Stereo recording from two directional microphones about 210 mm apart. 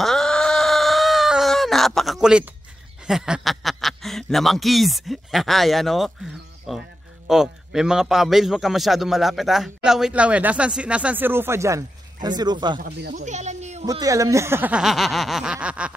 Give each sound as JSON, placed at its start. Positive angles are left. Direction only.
{"t": 0.0, "sound": "a sound", "side_deg": 0}
{"t": 3.1, "sound": "a man's voice", "side_deg": -5}
{"t": 12.8, "sound": "speech", "side_deg": -40}
{"t": 13.8, "sound": "a man's voice", "side_deg": -15}